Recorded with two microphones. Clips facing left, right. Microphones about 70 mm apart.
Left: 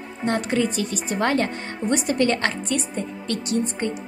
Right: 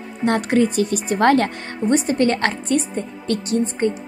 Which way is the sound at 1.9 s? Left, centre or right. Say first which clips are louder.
Right 3 dB; right.